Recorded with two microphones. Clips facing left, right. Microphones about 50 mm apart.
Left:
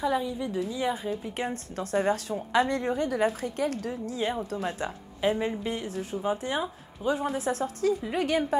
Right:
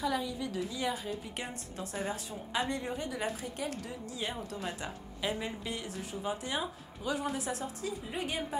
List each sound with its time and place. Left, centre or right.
0.0 s speech: left
4.2 s speech: left
7.6 s speech: left